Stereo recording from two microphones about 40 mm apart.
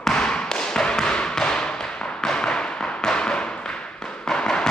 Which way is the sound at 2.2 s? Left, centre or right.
Left.